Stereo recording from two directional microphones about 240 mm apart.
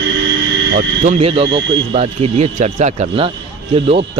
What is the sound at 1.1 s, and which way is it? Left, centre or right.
Speech, right.